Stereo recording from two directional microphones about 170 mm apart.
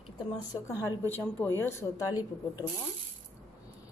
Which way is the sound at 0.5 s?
20° left (ahead or behind).